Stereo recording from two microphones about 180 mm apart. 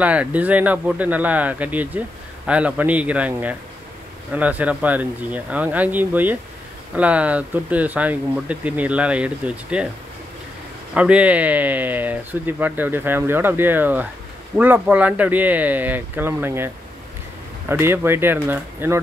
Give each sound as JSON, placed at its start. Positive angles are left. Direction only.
{"t": 0.0, "sound": "speech", "side_deg": -10}
{"t": 11.0, "sound": "speech", "side_deg": -5}